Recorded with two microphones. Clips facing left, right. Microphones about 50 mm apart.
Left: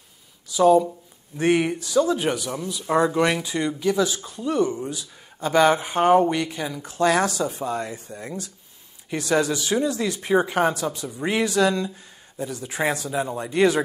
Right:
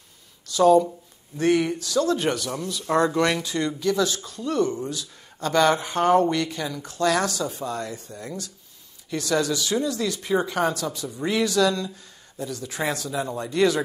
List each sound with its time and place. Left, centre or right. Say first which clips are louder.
0.5 s speech: even; centre
1.4 s speech: left 1 dB; left